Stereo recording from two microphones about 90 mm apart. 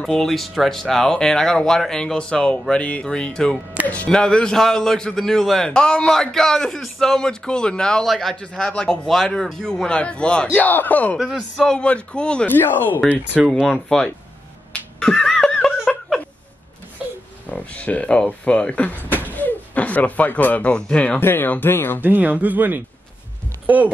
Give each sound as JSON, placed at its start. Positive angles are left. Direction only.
{"t": 0.0, "sound": "a man's voice", "side_deg": 5}
{"t": 11.1, "sound": "a man's voice", "side_deg": 0}
{"t": 12.5, "sound": "speech", "side_deg": 25}
{"t": 13.4, "sound": "a man's voice", "side_deg": 0}
{"t": 14.7, "sound": "a sound", "side_deg": 5}
{"t": 17.5, "sound": "a man's voice", "side_deg": 15}
{"t": 21.2, "sound": "speech", "side_deg": 25}
{"t": 22.0, "sound": "speech", "side_deg": -20}